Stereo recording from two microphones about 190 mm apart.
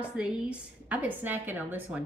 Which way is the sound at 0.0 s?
5° right (ahead or behind).